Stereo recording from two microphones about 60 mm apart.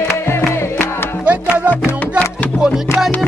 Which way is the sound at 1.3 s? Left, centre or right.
Right.